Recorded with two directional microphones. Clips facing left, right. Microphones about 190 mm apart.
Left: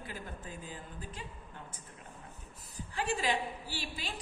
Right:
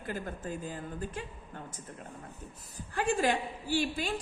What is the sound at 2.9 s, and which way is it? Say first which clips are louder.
A woman's voice: right 5 dB; 50° right (ahead or behind).